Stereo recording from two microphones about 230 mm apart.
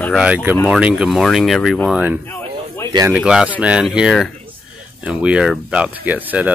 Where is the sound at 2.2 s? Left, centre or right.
Centre.